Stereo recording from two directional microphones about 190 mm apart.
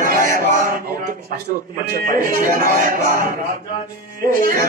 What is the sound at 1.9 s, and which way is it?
Speech, 50° right (ahead or behind).